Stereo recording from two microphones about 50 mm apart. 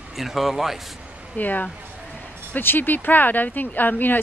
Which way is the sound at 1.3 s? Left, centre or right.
Left.